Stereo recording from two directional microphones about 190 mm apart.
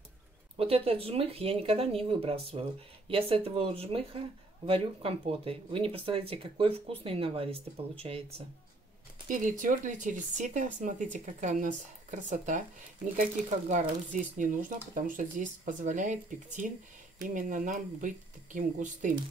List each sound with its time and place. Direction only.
0.6 s speech: 30° right (ahead or behind)
9.3 s speech: 45° right (ahead or behind)